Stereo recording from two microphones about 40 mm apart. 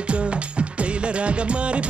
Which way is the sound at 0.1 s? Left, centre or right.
Right.